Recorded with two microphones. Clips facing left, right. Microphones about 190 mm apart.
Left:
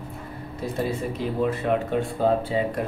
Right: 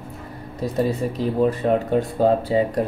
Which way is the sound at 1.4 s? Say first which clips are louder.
Right 4 dB; 35° right (ahead or behind).